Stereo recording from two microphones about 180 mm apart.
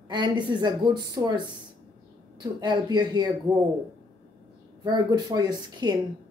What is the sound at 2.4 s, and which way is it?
Speech, 25° right (ahead or behind).